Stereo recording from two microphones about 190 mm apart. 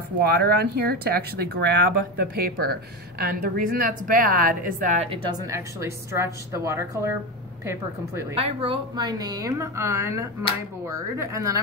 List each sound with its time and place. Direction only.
0.1 s a woman's voice: 55° right (ahead or behind)
5.1 s a woman's voice: 15° right (ahead or behind)
8.4 s a woman's voice: 30° right (ahead or behind); by 11.6 s 15° right (ahead or behind)